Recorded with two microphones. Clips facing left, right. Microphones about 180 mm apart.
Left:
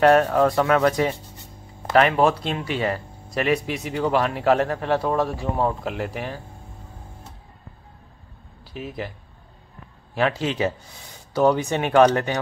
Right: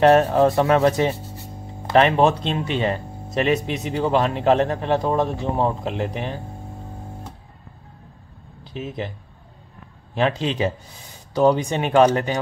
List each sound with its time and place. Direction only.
0.0 s speech: 30° right (ahead or behind)
8.7 s speech: 25° right (ahead or behind)
10.1 s speech: 20° right (ahead or behind)